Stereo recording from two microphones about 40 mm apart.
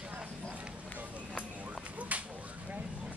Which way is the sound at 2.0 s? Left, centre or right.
Right.